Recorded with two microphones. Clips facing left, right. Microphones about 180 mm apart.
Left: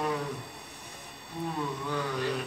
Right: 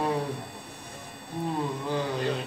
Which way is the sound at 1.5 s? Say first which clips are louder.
Right 3 dB; 30° right (ahead or behind).